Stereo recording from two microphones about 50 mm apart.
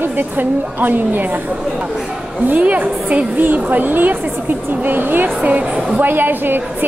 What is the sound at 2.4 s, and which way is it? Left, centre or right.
A woman's voice, right.